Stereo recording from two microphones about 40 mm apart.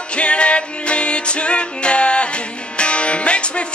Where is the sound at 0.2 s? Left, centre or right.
Left.